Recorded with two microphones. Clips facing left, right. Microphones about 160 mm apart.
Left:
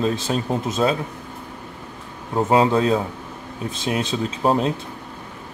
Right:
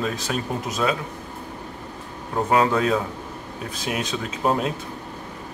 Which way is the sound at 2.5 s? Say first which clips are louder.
Left 2 dB; 25° left (ahead or behind).